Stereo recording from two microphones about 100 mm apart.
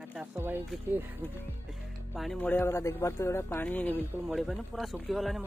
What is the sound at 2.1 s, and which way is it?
Speech, centre (ahead or behind).